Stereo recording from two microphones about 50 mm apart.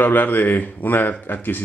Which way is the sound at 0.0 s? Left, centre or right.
Left.